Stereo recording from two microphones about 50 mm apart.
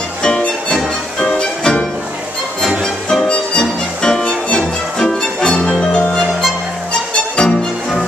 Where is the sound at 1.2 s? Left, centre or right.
Centre.